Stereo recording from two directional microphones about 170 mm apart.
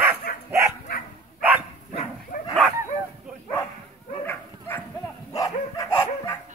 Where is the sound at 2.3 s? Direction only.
50° left (ahead or behind).